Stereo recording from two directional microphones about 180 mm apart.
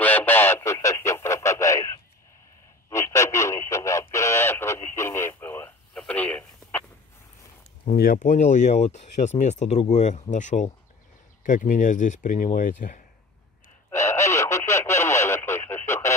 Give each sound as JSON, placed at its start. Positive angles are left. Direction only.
{"t": 0.0, "sound": "radio", "side_deg": 10}
{"t": 5.9, "sound": "telephone", "side_deg": 5}
{"t": 7.8, "sound": "speech", "side_deg": 55}
{"t": 13.8, "sound": "radio", "side_deg": 15}